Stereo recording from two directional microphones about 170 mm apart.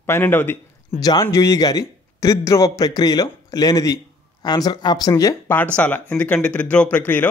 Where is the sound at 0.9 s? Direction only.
25° left (ahead or behind).